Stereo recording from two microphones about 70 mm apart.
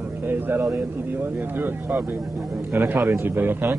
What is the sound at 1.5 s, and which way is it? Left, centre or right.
A man's voice, right.